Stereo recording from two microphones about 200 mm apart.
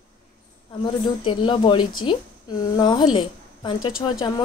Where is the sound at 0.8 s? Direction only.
25° left (ahead or behind).